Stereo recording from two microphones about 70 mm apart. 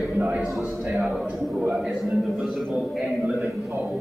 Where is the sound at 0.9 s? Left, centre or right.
Centre.